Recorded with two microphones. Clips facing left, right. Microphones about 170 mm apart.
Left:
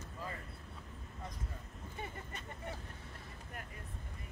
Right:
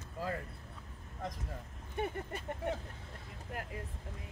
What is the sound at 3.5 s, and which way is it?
Speech, 90° right.